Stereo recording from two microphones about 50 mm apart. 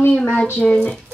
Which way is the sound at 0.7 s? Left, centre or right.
Left.